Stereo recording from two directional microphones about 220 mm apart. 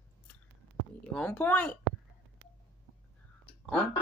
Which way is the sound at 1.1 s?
5° left (ahead or behind).